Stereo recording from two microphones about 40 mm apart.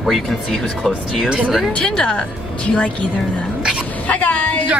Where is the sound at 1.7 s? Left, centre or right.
Left.